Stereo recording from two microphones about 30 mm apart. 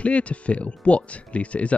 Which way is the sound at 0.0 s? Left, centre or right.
Left.